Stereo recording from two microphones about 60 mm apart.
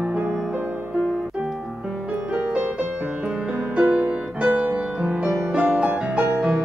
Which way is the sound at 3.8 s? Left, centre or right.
Right.